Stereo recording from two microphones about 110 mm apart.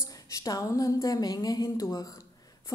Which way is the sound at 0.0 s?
30° left (ahead or behind).